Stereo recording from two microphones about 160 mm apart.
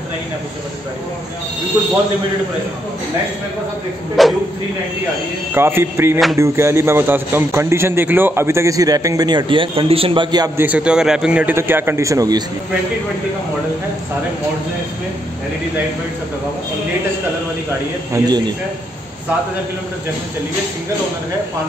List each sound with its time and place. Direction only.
4.2 s speech: centre (ahead or behind)
5.5 s a man's voice: 15° right (ahead or behind)
10.6 s a man's voice: 10° right (ahead or behind); by 12.4 s 25° right (ahead or behind)
18.1 s a man's voice: 25° right (ahead or behind)